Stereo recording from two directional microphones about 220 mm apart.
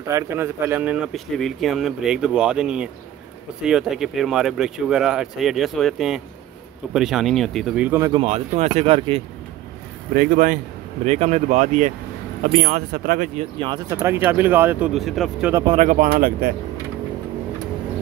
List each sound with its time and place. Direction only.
0.1 s speech: 10° right (ahead or behind)
8.2 s speech: 30° right (ahead or behind)
10.1 s speech: 40° right (ahead or behind)
13.6 s speech: 20° right (ahead or behind)
13.9 s speech: 10° right (ahead or behind)
15.5 s speech: 20° right (ahead or behind)
15.8 s speech: 35° right (ahead or behind)